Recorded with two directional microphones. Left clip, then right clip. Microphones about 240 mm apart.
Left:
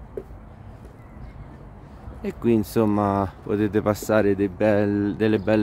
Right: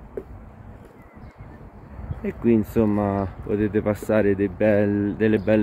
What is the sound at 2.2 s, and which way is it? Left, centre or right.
Speech, centre.